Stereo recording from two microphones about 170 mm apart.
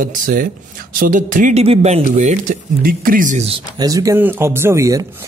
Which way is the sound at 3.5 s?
20° right (ahead or behind).